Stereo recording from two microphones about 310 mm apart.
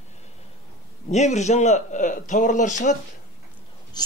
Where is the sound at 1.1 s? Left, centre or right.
Left.